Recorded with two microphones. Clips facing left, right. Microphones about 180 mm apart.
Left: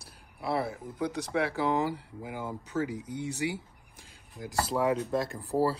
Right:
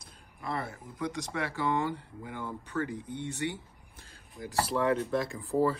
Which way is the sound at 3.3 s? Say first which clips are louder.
Left 2 dB; 10° left (ahead or behind).